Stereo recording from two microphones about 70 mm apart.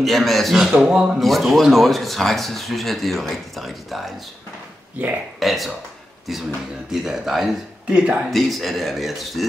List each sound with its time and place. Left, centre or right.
0.0 s speech: centre
1.2 s speech: centre
5.4 s speech: centre
6.9 s speech: centre
8.3 s speech: centre